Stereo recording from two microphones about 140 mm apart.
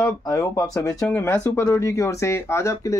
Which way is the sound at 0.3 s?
25° left (ahead or behind).